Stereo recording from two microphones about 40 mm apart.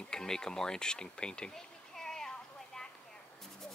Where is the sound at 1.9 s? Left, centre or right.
Centre.